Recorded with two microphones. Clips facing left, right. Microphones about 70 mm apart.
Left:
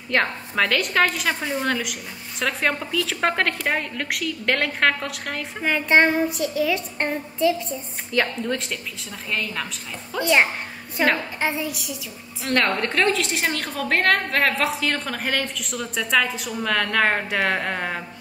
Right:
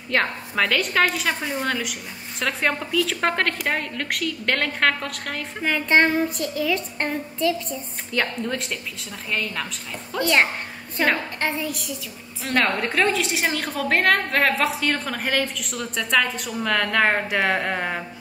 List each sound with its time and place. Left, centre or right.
0.1 s a woman's voice: centre
5.7 s a woman's voice: centre
8.1 s a woman's voice: centre
12.4 s a woman's voice: centre